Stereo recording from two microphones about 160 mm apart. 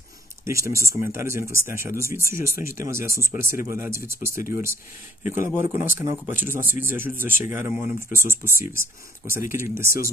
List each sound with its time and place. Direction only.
0.5 s speech: 20° right (ahead or behind)